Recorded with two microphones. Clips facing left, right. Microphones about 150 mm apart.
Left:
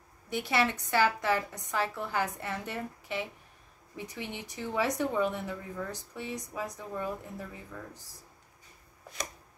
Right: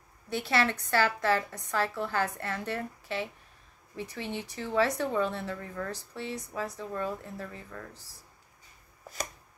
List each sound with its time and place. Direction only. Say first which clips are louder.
0.3 s speech: right 1 dB; 15° left (ahead or behind)